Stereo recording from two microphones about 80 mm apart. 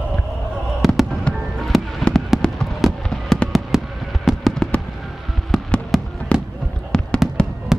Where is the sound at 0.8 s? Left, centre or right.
Centre.